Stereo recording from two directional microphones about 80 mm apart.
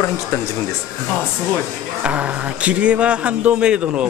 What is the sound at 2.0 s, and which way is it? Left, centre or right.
Speech, centre.